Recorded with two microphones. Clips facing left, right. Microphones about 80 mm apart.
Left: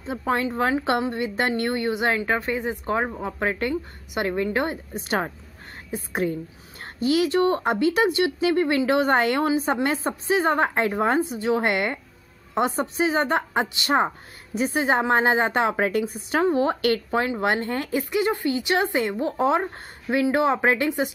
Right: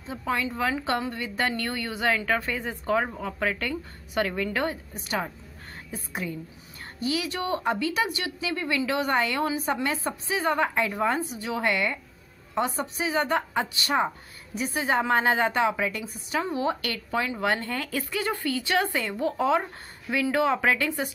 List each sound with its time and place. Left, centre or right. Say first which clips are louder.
0.0 s speech: left 4 dB; left
0.9 s a woman's voice: left 5 dB; left
3.2 s a woman's voice: left 3 dB; left
6.8 s speech: left 8 dB; left
9.5 s speech: left 5 dB; left
11.1 s speech: left 8 dB; left
11.6 s speech: left 2 dB; left
12.7 s a woman's voice: left 5 dB; left
15.5 s speech: left 3 dB; left
17.5 s a woman's voice: left 4 dB; left